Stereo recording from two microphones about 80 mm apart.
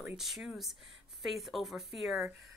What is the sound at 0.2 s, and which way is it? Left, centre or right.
A woman's voice, centre.